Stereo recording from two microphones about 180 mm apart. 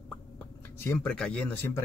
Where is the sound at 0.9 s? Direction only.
5° left (ahead or behind).